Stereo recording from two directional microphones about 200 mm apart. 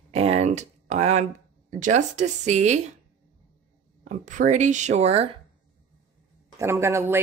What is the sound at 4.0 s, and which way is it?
Speech, 40° right (ahead or behind).